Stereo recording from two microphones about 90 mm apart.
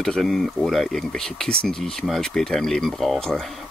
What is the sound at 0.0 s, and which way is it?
Speech, 5° left (ahead or behind).